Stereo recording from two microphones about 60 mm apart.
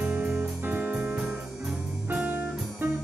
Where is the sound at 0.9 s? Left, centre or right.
Centre.